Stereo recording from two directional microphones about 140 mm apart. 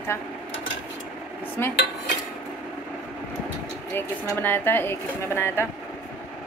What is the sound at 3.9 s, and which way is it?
A woman's voice, 15° left (ahead or behind).